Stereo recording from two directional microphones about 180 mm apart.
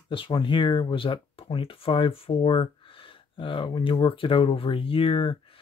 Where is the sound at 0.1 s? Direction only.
25° left (ahead or behind).